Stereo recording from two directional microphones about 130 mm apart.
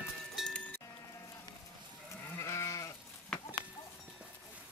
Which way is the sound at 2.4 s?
20° left (ahead or behind).